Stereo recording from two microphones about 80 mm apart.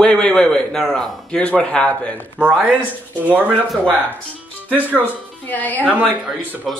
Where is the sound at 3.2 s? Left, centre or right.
Centre.